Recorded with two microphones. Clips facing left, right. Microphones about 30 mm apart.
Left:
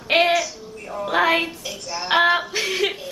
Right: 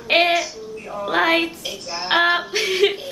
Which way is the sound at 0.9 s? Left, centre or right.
Centre.